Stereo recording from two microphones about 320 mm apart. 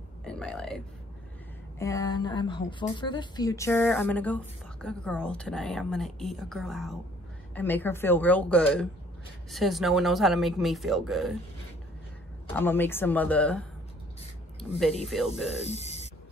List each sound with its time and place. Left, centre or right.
0.2 s burping: centre
1.8 s a woman's voice: centre
12.5 s a woman's voice: centre
15.0 s a woman's voice: centre
15.6 s speech: centre